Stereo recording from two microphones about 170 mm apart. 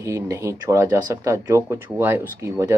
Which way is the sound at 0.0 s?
15° right (ahead or behind).